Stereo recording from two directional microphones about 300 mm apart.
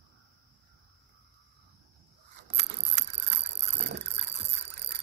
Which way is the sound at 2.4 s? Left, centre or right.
Right.